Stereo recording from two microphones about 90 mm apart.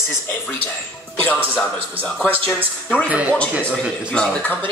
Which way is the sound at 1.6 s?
10° left (ahead or behind).